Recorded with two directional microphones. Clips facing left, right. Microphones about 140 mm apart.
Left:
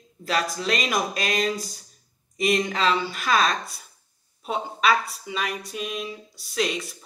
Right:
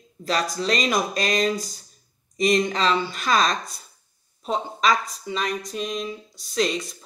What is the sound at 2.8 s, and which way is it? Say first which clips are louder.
Speech: right 1 dB; 10° left (ahead or behind).